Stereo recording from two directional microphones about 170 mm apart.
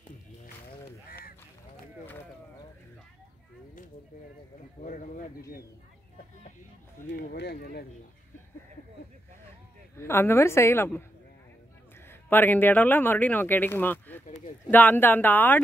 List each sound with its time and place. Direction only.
4.8 s speech: 50° left (ahead or behind)
7.1 s speech: 80° left
9.9 s speech: 15° left (ahead or behind)
12.1 s speech: 10° left (ahead or behind)
14.2 s a sound: 45° left (ahead or behind)
14.7 s speech: 10° left (ahead or behind)